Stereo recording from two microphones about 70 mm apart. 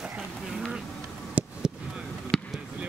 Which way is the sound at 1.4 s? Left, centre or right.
Right.